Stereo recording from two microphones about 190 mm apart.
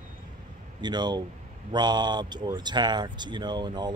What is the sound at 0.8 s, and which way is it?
Speech, 20° right (ahead or behind).